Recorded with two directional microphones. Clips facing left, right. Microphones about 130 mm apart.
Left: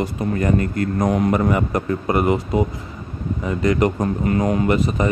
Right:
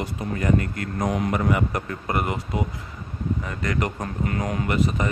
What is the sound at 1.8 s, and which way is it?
Speech, 25° left (ahead or behind).